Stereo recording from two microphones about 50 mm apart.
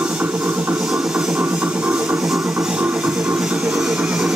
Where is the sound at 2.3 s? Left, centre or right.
Centre.